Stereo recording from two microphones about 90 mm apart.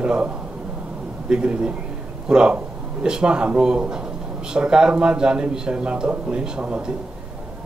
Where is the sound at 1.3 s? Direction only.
10° right (ahead or behind).